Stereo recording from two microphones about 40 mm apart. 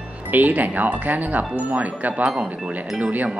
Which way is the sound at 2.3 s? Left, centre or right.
Centre.